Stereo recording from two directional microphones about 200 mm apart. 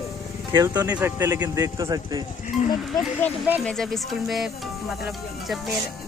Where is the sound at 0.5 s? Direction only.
15° right (ahead or behind).